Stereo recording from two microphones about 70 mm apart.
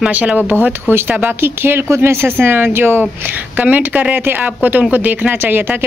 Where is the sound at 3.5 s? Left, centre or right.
Right.